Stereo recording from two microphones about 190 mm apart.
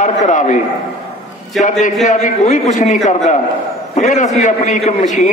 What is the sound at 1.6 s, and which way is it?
A man's voice, 40° left (ahead or behind).